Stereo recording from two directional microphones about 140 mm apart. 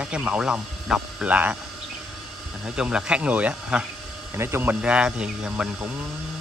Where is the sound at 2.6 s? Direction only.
5° right (ahead or behind).